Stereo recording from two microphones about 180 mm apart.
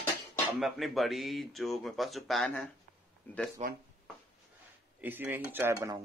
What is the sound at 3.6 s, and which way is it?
Speech, 40° right (ahead or behind).